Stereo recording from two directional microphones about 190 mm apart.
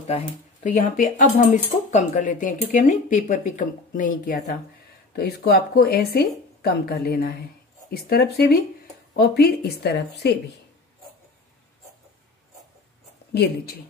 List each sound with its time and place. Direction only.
0.0 s speech: 35° left (ahead or behind); by 10.3 s 60° left (ahead or behind)
13.3 s speech: 60° left (ahead or behind)